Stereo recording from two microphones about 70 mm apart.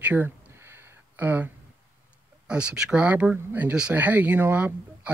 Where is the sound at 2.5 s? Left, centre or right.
Centre.